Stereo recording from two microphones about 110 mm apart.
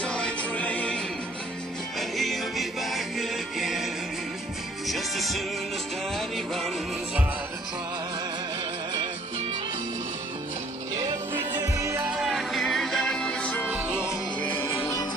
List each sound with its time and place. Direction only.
0.0 s music: 10° left (ahead or behind)
11.5 s music: 25° right (ahead or behind)
12.1 s music: 5° right (ahead or behind)
13.7 s music: 15° right (ahead or behind)
13.9 s music: 20° left (ahead or behind)